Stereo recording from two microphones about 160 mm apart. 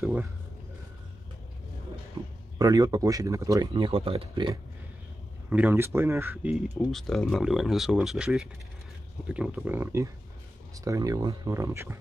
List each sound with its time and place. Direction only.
0.0 s speech: 10° right (ahead or behind)
2.6 s speech: 25° right (ahead or behind)
5.5 s speech: 10° right (ahead or behind)
6.9 s speech: centre (ahead or behind); by 12.0 s 15° right (ahead or behind)